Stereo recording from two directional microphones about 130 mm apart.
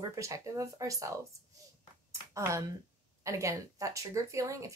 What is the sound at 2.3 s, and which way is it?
Speech, 20° right (ahead or behind).